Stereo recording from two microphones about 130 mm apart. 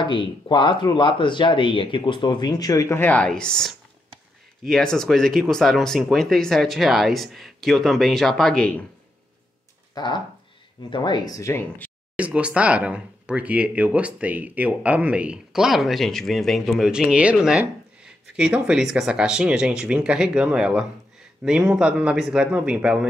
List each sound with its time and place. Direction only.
0.0 s speech: 40° left (ahead or behind)
3.0 s a woman's voice: 10° left (ahead or behind)
9.9 s speech: 35° left (ahead or behind)
12.2 s speech: 10° right (ahead or behind)